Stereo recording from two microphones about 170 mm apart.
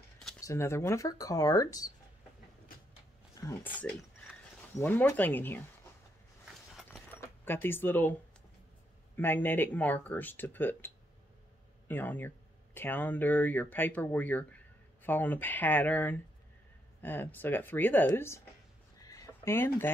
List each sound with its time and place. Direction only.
0.4 s speech: 15° left (ahead or behind)
3.3 s speech: 15° left (ahead or behind)
6.9 s keys jangling: 10° left (ahead or behind)
9.1 s speech: 10° left (ahead or behind)
11.9 s speech: 10° left (ahead or behind)
19.0 s a sound: 15° left (ahead or behind)